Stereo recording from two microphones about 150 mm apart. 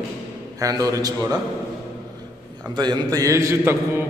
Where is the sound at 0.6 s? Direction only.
25° right (ahead or behind).